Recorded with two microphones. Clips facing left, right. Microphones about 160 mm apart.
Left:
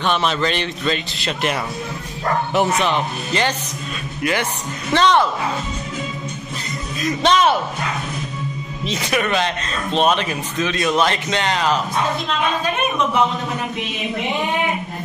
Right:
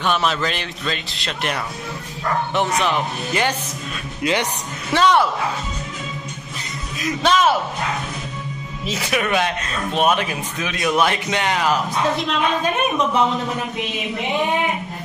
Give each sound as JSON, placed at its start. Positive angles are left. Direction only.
{"t": 0.0, "sound": "a man's voice", "side_deg": -5}
{"t": 4.2, "sound": "speech", "side_deg": -20}
{"t": 4.9, "sound": "speech", "side_deg": -10}
{"t": 7.2, "sound": "a man's voice", "side_deg": -5}
{"t": 8.8, "sound": "speech", "side_deg": -5}